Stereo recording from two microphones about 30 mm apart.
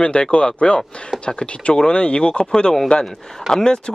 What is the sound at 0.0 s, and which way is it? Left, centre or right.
Speech, left.